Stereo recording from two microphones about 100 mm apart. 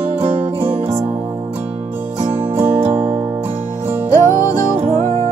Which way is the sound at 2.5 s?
20° right (ahead or behind).